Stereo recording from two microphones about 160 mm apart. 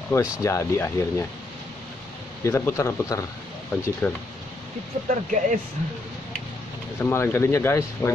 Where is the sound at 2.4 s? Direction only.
15° left (ahead or behind).